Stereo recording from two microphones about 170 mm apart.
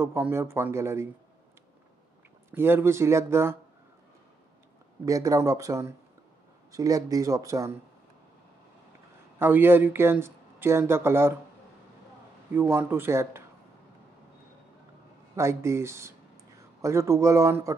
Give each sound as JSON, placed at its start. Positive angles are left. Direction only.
{"t": 0.0, "sound": "speech", "side_deg": -15}
{"t": 2.5, "sound": "speech", "side_deg": -15}
{"t": 5.0, "sound": "speech", "side_deg": -20}
{"t": 9.4, "sound": "speech", "side_deg": -10}
{"t": 12.5, "sound": "speech", "side_deg": -15}
{"t": 15.3, "sound": "speech", "side_deg": -15}